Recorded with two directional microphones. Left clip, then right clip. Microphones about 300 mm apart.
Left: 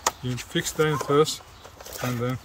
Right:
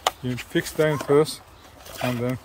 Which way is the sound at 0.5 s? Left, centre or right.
Centre.